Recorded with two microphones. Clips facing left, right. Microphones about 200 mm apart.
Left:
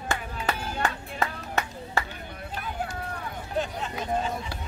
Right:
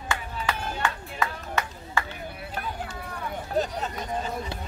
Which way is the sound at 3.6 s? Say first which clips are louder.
Right 3 dB; 40° right (ahead or behind).